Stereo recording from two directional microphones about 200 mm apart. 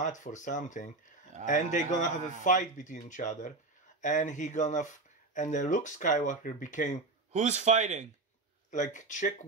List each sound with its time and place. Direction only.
0.0 s a man's voice: 40° left (ahead or behind)
7.3 s speech: 35° right (ahead or behind)
8.6 s a man's voice: 40° left (ahead or behind)